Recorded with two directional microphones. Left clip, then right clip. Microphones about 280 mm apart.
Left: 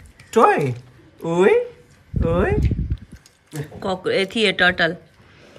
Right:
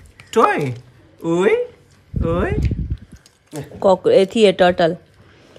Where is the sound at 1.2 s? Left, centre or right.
Centre.